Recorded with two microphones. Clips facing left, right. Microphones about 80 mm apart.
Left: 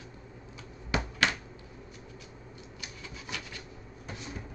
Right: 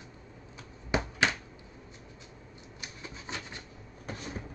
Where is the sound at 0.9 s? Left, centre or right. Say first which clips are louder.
Right 1 dB; right.